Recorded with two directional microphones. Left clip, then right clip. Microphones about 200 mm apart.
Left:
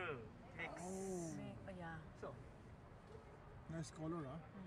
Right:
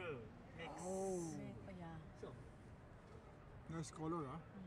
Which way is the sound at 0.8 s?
20° left (ahead or behind).